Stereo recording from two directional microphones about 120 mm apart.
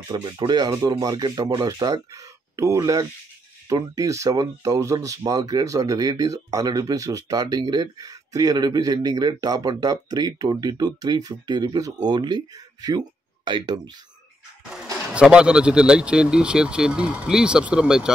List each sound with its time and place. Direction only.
0.1 s speech: 40° right (ahead or behind)
14.7 s speech: 5° right (ahead or behind)